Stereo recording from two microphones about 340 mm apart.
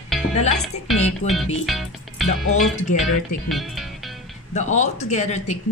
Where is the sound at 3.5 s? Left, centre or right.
Centre.